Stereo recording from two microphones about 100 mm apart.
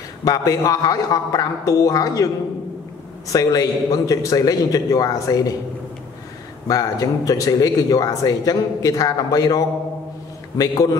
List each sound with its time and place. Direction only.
0.2 s speech: 35° left (ahead or behind)
3.3 s speech: 40° left (ahead or behind)
6.7 s speech: 35° left (ahead or behind)